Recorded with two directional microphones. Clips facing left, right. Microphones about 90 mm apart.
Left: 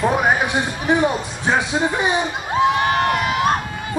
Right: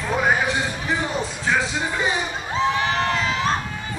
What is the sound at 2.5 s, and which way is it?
Crowd, 55° left (ahead or behind).